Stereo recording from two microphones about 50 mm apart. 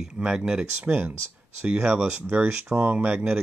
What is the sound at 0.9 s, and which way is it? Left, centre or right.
Speech, right.